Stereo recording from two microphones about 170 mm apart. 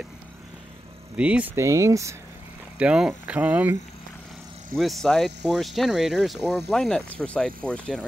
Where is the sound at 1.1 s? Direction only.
5° right (ahead or behind).